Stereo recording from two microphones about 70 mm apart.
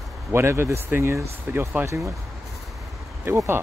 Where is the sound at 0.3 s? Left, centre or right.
Right.